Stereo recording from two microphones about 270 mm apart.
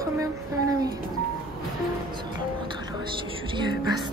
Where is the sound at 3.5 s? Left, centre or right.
Centre.